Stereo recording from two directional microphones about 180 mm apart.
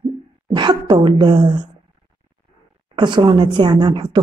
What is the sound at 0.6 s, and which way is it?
A woman's voice, 25° right (ahead or behind).